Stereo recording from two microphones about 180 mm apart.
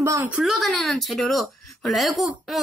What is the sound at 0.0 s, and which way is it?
Speech, 15° right (ahead or behind).